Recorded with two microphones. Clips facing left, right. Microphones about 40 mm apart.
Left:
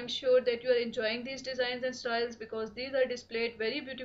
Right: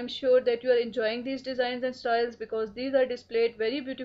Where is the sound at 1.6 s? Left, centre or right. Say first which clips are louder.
Right 3 dB; centre.